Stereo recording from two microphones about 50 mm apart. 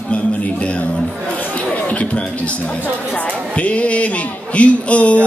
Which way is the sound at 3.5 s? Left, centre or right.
Left.